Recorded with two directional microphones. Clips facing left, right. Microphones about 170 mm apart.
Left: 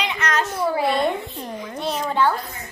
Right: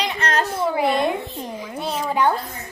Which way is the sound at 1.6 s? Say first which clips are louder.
Left 1 dB; 5° right (ahead or behind).